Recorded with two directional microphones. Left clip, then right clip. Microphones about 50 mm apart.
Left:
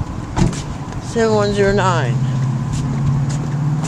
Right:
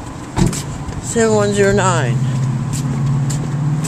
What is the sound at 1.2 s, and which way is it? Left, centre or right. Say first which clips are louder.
Speech: right 1 dB; right.